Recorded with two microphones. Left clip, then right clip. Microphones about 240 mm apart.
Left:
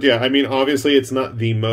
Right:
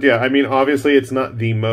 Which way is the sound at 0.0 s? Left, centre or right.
Centre.